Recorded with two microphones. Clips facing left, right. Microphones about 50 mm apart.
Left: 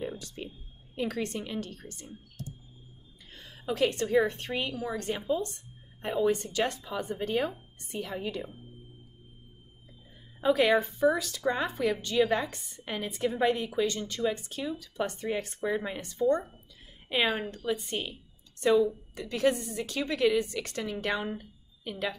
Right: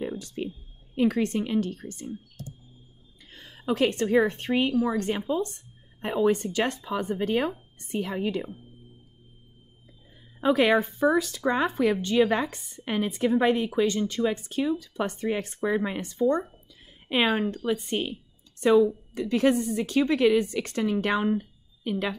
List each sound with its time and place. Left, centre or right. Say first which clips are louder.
0.0 s a sound: right 5 dB; right
0.9 s a woman's voice: right 8 dB; right
3.7 s a woman's voice: right 3 dB; right
10.4 s a woman's voice: right 3 dB; right
10.7 s a woman's voice: right 3 dB; right